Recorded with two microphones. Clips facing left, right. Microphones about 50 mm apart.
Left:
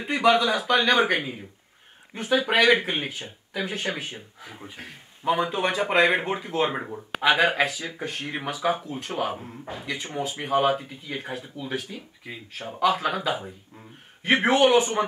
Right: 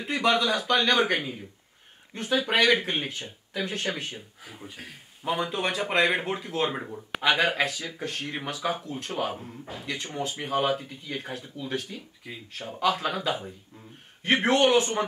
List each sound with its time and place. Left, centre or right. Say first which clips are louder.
0.0 s speech: left 4 dB; centre
5.2 s speech: left 4 dB; centre